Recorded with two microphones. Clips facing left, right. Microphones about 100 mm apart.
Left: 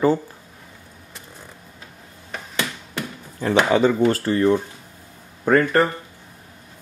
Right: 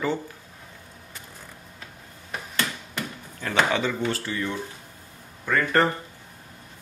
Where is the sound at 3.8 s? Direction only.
45° left (ahead or behind).